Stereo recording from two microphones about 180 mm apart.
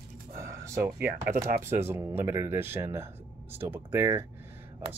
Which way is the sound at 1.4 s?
15° right (ahead or behind).